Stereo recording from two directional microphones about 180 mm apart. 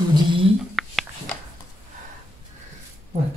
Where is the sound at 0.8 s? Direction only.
Centre (ahead or behind).